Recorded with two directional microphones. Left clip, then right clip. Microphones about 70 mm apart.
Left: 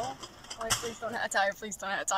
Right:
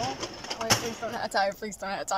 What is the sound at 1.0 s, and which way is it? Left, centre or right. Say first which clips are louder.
Speech: right 2 dB; centre.